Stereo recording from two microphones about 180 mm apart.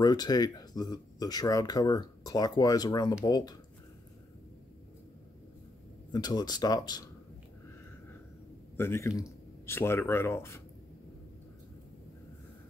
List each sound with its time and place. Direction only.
0.0 s speech: 20° left (ahead or behind)
6.1 s speech: 20° left (ahead or behind)
8.7 s a man's voice: 15° left (ahead or behind)